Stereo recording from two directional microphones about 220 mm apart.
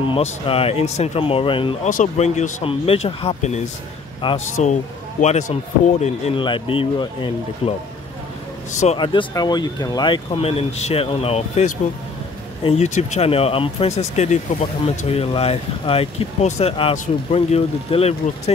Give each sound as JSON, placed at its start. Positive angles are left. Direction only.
{"t": 0.1, "sound": "speech", "side_deg": 25}
{"t": 8.7, "sound": "speech", "side_deg": 25}